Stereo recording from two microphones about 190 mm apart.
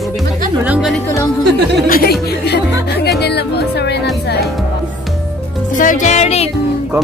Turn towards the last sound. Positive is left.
turn(degrees=35)  # may be behind; listen again after turning